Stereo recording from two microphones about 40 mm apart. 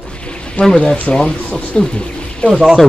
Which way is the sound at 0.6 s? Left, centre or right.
Left.